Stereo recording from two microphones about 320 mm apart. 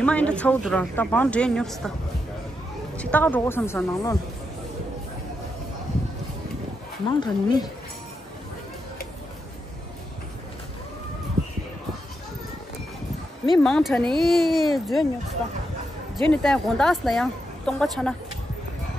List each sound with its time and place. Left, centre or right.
0.0 s a woman's voice: centre
3.0 s a woman's voice: centre
7.1 s a woman's voice: centre
13.5 s a woman's voice: centre
16.3 s a woman's voice: centre